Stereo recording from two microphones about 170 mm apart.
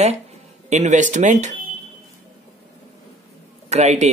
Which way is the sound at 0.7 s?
45° right (ahead or behind).